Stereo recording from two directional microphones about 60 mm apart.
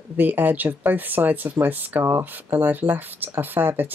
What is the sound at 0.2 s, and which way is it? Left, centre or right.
Speech, right.